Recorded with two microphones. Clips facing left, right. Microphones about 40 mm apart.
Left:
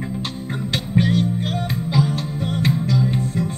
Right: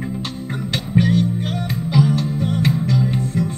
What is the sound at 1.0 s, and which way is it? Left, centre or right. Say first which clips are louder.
Music: right 2 dB; left.